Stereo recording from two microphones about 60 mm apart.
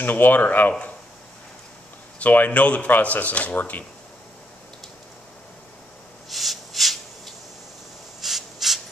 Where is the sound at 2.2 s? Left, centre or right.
Left.